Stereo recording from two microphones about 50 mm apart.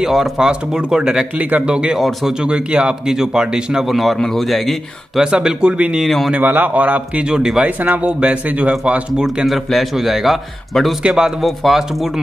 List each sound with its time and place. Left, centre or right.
0.0 s speech: centre
3.8 s a man's voice: centre
5.2 s speech: centre
6.0 s a man's voice: centre
6.4 s speech: right
9.5 s a man's voice: centre
11.0 s speech: centre
11.4 s a man's voice: centre